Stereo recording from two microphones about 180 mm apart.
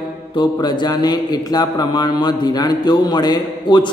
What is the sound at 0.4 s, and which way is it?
A man's voice, 25° left (ahead or behind).